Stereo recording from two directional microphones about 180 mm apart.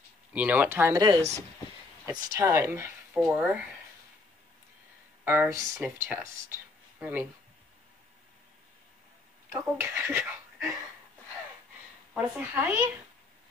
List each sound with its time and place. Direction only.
0.3 s speech: 10° right (ahead or behind)
5.2 s speech: 10° right (ahead or behind)
9.5 s speech: 10° right (ahead or behind)
12.1 s speech: 10° right (ahead or behind)